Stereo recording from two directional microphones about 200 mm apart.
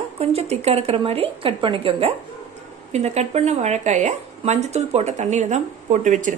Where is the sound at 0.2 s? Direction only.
30° right (ahead or behind).